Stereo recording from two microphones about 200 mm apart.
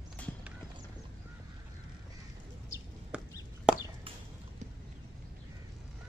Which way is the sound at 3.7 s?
5° right (ahead or behind).